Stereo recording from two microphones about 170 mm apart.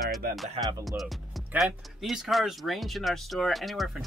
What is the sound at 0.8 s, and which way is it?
Speech, centre (ahead or behind).